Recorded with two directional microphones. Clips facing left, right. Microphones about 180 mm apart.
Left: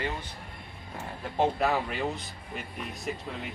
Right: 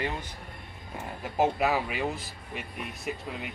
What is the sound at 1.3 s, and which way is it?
Speech, 5° right (ahead or behind).